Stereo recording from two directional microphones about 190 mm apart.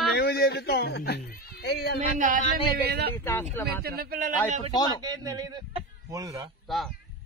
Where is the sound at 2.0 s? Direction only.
45° right (ahead or behind).